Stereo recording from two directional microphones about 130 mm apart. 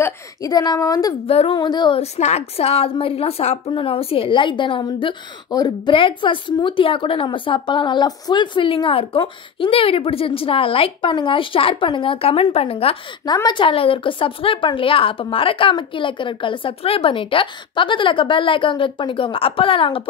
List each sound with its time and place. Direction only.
0.0 s a woman's voice: 30° left (ahead or behind)
1.2 s a woman's voice: 50° left (ahead or behind)
1.6 s a woman's voice: 35° left (ahead or behind)
2.0 s a woman's voice: 55° left (ahead or behind)
13.2 s a woman's voice: 30° left (ahead or behind)